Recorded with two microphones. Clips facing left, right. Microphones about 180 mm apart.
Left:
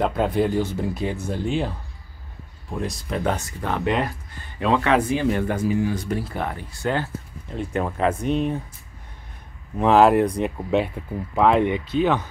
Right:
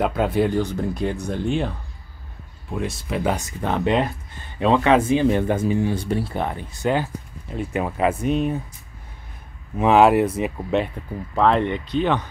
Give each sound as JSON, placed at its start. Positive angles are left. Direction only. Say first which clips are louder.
{"t": 0.0, "sound": "speech", "louder": "right 1 dB", "side_deg": 0}
{"t": 2.8, "sound": "speech", "louder": "right 1 dB", "side_deg": -5}
{"t": 9.8, "sound": "speech", "louder": "right 1 dB", "side_deg": 0}